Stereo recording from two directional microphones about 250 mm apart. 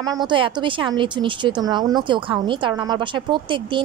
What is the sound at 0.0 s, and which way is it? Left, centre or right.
Speech, centre.